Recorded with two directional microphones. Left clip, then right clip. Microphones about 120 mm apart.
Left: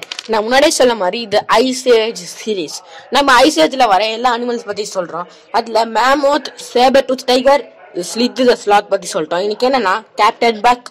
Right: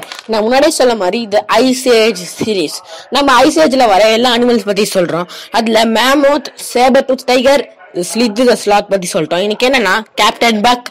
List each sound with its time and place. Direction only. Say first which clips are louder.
0.3 s speech: right 2 dB; 20° right (ahead or behind)
5.5 s speech: right 4 dB; 45° right (ahead or behind)
6.7 s speech: right 1 dB; 20° right (ahead or behind)
7.4 s speech: right 2 dB; 35° right (ahead or behind); by 10.3 s 50° right (ahead or behind)
10.4 s speech: right 2 dB; 40° right (ahead or behind)